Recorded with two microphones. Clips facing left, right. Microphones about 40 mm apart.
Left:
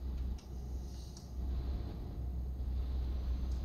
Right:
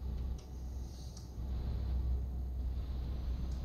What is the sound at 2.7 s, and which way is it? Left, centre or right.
Vehicle, centre.